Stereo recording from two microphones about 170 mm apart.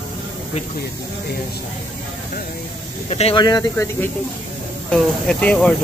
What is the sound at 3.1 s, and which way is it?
Speech, 40° left (ahead or behind).